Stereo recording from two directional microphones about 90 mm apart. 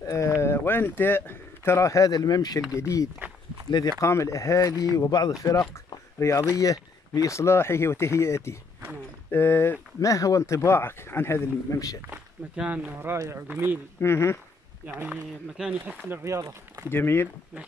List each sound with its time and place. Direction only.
0.0 s a sound: 35° left (ahead or behind)
0.4 s speech: 25° left (ahead or behind); by 2.6 s 50° left (ahead or behind)
3.2 s walk: 20° right (ahead or behind)
3.7 s speech: 60° left (ahead or behind)
4.0 s speech: 35° left (ahead or behind)
9.3 s speech: 20° left (ahead or behind)
9.9 s speech: 40° left (ahead or behind)
12.1 s speech: 15° right (ahead or behind)
13.0 s speech: 30° right (ahead or behind)
14.0 s speech: 30° left (ahead or behind)
15.5 s speech: 5° right (ahead or behind)
16.1 s speech: 25° right (ahead or behind)
16.9 s speech: 25° left (ahead or behind)